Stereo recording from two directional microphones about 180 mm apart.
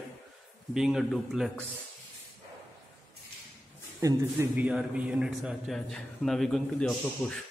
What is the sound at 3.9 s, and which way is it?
A man's voice, 15° right (ahead or behind).